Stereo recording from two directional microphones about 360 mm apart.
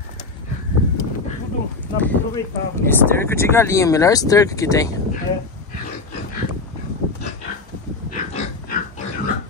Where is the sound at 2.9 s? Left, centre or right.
Centre.